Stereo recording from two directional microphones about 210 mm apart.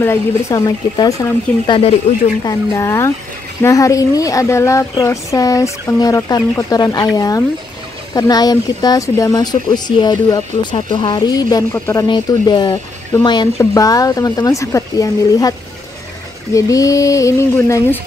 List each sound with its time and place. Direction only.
0.0 s speech: 10° left (ahead or behind)
2.1 s speech: 30° left (ahead or behind)
2.4 s speech: 15° left (ahead or behind)
16.5 s speech: 15° left (ahead or behind)